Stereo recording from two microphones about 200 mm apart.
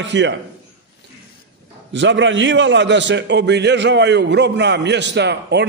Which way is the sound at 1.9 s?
65° right (ahead or behind).